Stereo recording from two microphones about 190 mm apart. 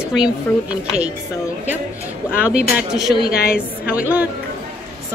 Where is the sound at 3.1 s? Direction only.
55° left (ahead or behind).